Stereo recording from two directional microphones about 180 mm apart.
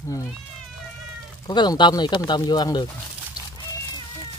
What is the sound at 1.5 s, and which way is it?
Speech, 25° left (ahead or behind).